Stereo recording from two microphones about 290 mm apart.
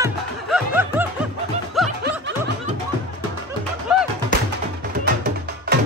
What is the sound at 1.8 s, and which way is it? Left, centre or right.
Snicker, centre.